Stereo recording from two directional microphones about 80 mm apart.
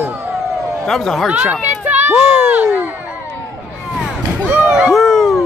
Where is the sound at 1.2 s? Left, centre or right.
Centre.